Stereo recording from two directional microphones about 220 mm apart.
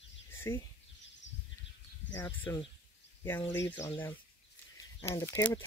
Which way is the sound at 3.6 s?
10° left (ahead or behind).